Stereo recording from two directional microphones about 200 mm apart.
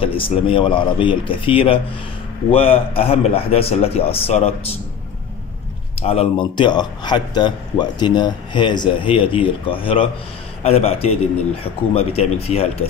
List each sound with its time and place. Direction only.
0.0 s speech: 25° left (ahead or behind)
5.9 s speech: 30° left (ahead or behind)